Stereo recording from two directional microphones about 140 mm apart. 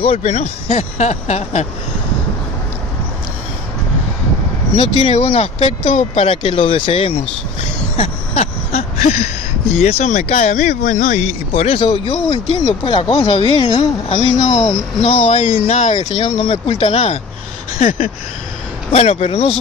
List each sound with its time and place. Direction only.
0.0 s speech: 45° left (ahead or behind)
5.0 s speech: 40° left (ahead or behind)
6.4 s speech: 40° left (ahead or behind)
8.0 s a sound: 50° left (ahead or behind)
9.8 s speech: 50° left (ahead or behind)
16.2 s speech: 40° left (ahead or behind)
17.7 s a sound: 75° left (ahead or behind)
18.9 s speech: 50° left (ahead or behind)